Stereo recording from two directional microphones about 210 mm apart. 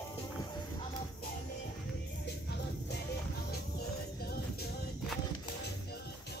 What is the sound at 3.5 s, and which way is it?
Music, 50° left (ahead or behind).